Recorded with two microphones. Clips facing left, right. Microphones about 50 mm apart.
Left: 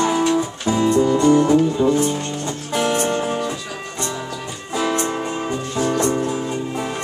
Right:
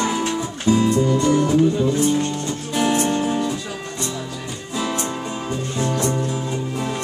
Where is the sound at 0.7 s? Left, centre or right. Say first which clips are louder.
Even; left.